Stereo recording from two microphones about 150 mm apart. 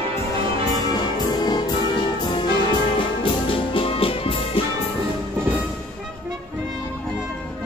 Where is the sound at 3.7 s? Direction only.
35° left (ahead or behind).